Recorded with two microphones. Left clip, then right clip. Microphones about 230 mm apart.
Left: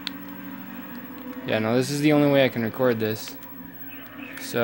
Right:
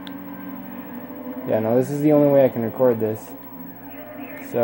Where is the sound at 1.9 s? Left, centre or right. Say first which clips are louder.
Right 4 dB; left.